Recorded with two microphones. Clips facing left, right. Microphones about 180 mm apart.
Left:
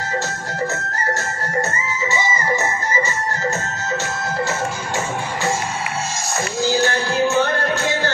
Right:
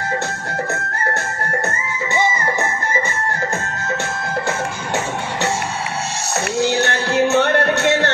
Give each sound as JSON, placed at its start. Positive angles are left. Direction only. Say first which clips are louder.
{"t": 6.6, "sound": "music", "louder": "left 1 dB", "side_deg": -65}